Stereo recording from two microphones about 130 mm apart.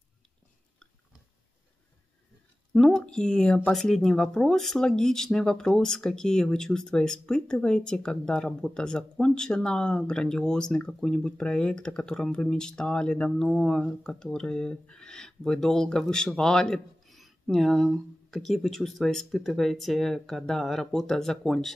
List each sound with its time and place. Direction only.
2.7 s speech: 5° left (ahead or behind)